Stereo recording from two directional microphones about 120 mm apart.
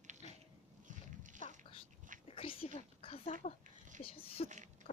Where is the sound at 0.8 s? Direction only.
90° right.